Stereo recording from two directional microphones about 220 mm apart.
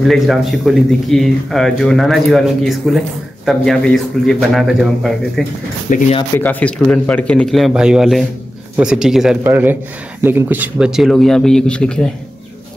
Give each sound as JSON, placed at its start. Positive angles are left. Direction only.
{"t": 0.0, "sound": "speech", "side_deg": 0}
{"t": 5.9, "sound": "speech", "side_deg": 35}
{"t": 6.3, "sound": "speech", "side_deg": 5}